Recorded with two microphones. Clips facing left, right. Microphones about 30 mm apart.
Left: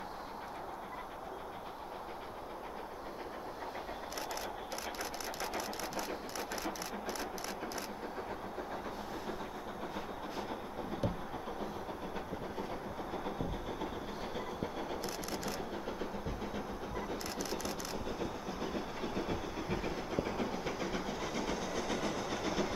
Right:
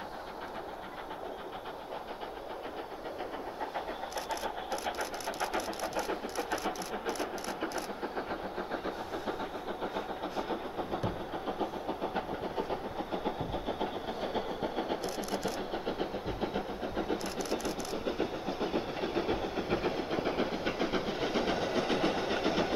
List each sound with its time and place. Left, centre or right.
4.3 s vehicle: centre
8.0 s vehicle: right
15.0 s vehicle: centre
15.7 s vehicle: right
17.4 s a sound: centre
17.9 s vehicle: right